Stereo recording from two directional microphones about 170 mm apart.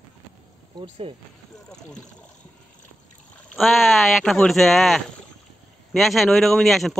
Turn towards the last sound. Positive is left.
turn(degrees=0)  # may be behind; listen again after turning